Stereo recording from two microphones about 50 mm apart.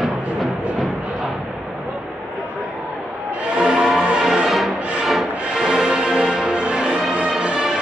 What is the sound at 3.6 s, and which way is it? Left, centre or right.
Music, centre.